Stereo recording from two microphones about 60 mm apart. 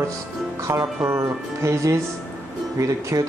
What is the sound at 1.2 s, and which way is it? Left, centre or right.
Speech, right.